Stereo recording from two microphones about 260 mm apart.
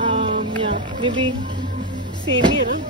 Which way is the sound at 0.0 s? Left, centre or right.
Centre.